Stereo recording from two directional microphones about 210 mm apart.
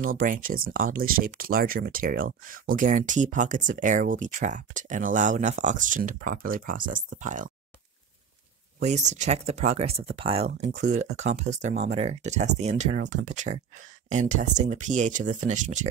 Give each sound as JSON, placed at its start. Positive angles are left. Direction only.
{"t": 0.0, "sound": "speech", "side_deg": -40}
{"t": 8.7, "sound": "speech", "side_deg": -35}